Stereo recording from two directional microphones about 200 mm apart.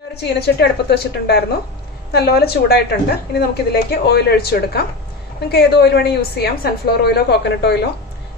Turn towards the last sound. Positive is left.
turn(degrees=55)  # may be behind; listen again after turning